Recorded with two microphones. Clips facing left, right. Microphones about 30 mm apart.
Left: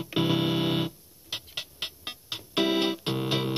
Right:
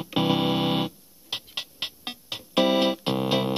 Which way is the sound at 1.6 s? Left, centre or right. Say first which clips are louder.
Right 3 dB; right.